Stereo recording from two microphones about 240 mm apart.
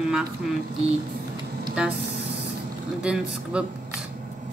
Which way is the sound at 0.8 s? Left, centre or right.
Centre.